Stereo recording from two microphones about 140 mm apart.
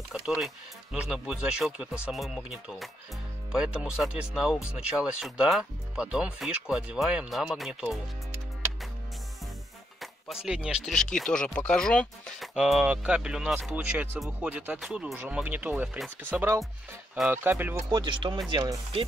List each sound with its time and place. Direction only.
0.1 s speech: 5° right (ahead or behind)
9.9 s speech: centre (ahead or behind)
11.0 s speech: 5° left (ahead or behind); by 17.7 s 15° right (ahead or behind)
17.8 s speech: 30° right (ahead or behind)